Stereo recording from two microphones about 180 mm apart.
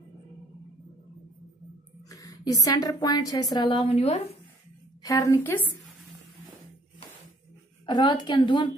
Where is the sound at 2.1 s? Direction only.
20° left (ahead or behind); by 4.4 s 35° left (ahead or behind).